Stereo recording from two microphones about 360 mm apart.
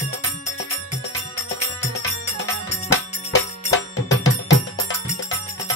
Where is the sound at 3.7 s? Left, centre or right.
Left.